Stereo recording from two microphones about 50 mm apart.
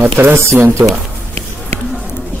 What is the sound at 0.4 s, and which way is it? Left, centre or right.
Speech, right.